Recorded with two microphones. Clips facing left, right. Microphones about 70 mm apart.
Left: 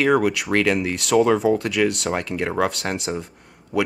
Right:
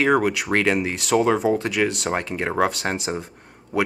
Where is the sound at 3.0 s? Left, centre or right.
Right.